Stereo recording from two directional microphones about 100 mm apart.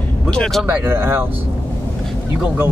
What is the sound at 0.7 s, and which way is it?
Speech, 20° right (ahead or behind).